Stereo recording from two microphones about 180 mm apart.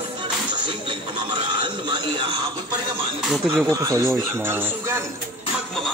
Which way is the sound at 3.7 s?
20° right (ahead or behind).